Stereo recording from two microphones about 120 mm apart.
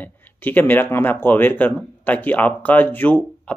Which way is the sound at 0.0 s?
15° left (ahead or behind).